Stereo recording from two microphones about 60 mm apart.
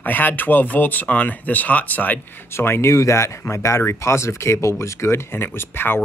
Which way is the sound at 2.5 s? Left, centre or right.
Left.